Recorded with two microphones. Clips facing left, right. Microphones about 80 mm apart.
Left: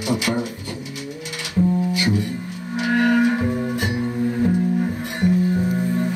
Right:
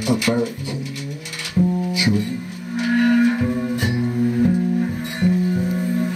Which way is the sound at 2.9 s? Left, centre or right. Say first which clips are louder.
Right 1 dB; left.